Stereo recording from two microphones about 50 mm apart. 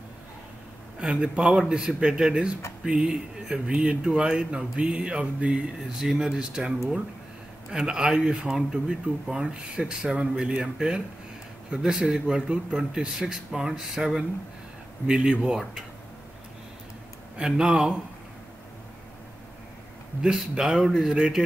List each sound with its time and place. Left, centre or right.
0.9 s speech: right
1.6 s speech: centre
7.7 s speech: centre
17.4 s speech: centre
20.2 s speech: centre